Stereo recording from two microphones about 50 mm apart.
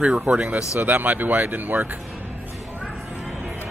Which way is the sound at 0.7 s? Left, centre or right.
Right.